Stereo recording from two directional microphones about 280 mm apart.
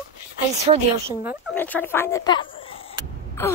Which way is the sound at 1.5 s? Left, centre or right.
Centre.